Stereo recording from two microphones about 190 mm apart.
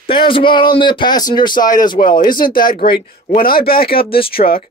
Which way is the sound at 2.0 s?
50° left (ahead or behind).